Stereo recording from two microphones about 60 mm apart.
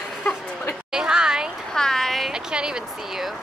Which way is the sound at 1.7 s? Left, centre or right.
Centre.